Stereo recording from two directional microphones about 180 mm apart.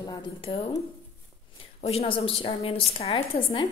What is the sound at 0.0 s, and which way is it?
A woman's voice, 25° left (ahead or behind).